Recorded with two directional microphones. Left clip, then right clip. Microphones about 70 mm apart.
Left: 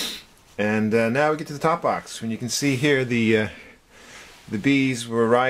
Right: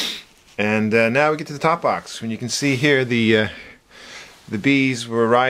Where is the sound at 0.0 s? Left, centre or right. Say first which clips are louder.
Right 4 dB; right.